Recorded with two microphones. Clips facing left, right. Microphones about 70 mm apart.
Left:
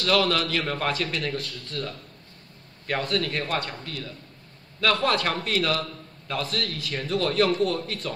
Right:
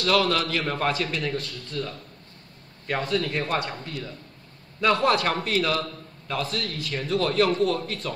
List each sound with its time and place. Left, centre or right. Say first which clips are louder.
0.0 s a man's voice: right 1 dB; centre
3.8 s a man's voice: right 1 dB; right; by 8.1 s centre